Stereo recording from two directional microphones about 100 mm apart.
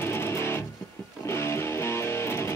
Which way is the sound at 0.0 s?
25° left (ahead or behind).